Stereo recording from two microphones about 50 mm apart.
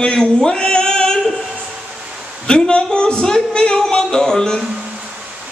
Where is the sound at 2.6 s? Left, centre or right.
Centre.